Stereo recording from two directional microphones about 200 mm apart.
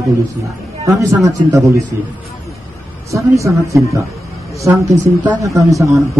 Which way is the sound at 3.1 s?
15° right (ahead or behind).